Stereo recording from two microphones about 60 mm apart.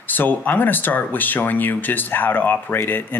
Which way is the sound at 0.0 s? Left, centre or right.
Left.